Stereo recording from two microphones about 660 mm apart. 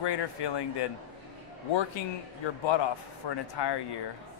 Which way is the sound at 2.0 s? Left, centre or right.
Left.